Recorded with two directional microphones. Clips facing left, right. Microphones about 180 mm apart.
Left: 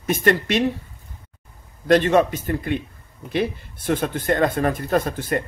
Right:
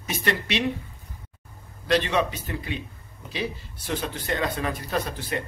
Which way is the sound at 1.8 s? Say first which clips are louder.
Left 7 dB; 50° left (ahead or behind).